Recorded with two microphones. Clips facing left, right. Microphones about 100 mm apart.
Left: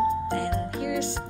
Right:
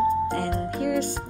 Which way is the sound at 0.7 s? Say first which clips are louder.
Right 6 dB; 45° right (ahead or behind).